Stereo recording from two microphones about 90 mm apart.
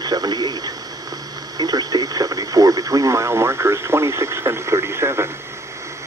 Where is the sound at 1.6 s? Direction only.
50° right (ahead or behind).